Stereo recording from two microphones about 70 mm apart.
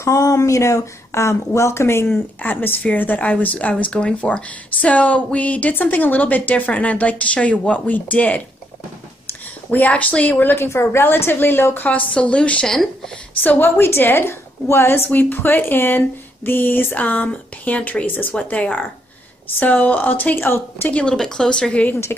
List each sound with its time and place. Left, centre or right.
0.0 s speech: left
2.4 s a woman's voice: left
9.7 s a woman's voice: left
12.1 s speech: centre
13.4 s a woman's voice: left
20.9 s speech: centre